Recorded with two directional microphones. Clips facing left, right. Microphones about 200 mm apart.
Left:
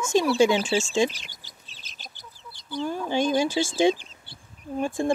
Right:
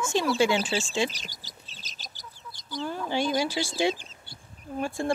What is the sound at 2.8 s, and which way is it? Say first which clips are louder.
Speech: left 3 dB; 15° left (ahead or behind).